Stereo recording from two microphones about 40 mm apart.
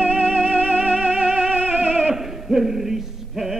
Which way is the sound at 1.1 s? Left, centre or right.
Right.